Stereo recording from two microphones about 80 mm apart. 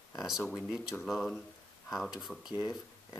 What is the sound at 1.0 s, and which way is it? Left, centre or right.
Speech, centre.